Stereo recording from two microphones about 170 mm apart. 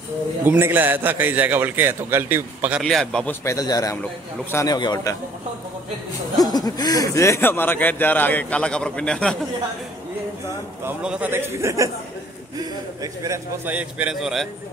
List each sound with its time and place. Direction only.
0.5 s a man's voice: 10° right (ahead or behind)
2.8 s a man's voice: centre (ahead or behind)
3.4 s a man's voice: 20° left (ahead or behind)
6.3 s speech: 25° left (ahead or behind); by 9.4 s 5° left (ahead or behind)
10.9 s a man's voice: 5° right (ahead or behind)